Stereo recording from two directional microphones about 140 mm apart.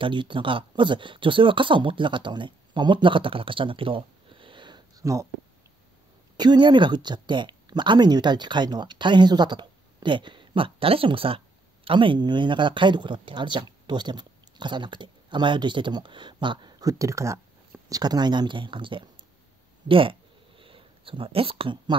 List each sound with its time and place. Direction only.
0.0 s speech: 35° right (ahead or behind)
6.3 s speech: 30° right (ahead or behind)
19.9 s a sound: 40° right (ahead or behind)